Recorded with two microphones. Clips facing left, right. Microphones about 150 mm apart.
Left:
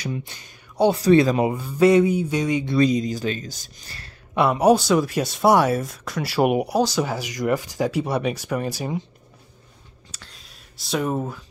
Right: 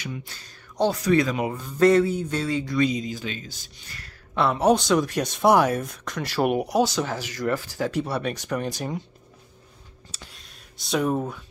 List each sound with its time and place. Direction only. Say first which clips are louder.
0.2 s speech: left 4 dB; 20° left (ahead or behind)
0.9 s speech: left 5 dB; 30° left (ahead or behind)
1.5 s speech: left 2 dB; 10° left (ahead or behind)
2.7 s speech: left 6 dB; 40° left (ahead or behind)
4.3 s speech: left 3 dB; 15° left (ahead or behind)
10.3 s a sound: even; centre (ahead or behind)